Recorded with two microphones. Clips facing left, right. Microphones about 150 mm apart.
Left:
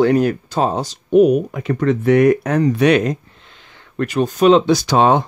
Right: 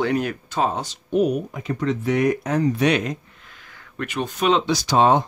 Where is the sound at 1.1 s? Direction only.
65° left (ahead or behind).